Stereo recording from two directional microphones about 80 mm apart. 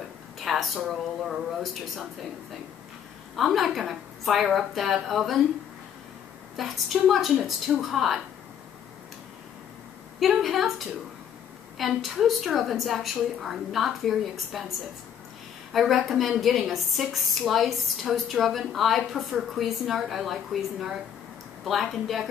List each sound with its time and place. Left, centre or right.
0.4 s a sound: centre
0.8 s a woman's voice: centre
3.3 s a woman's voice: centre
6.5 s a woman's voice: centre
10.2 s a woman's voice: centre
11.8 s a woman's voice: centre
15.7 s a woman's voice: centre
21.6 s a woman's voice: centre